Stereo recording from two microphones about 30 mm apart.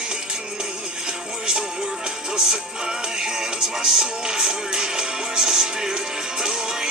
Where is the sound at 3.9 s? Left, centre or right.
Centre.